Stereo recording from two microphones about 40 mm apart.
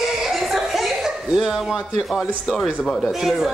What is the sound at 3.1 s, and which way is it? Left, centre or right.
Speech, centre.